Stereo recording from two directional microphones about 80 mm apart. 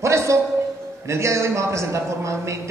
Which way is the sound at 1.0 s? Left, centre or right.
Right.